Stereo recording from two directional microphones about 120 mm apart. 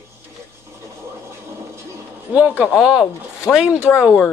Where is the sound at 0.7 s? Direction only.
20° right (ahead or behind).